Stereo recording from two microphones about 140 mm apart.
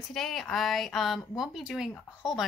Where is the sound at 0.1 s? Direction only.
Centre (ahead or behind).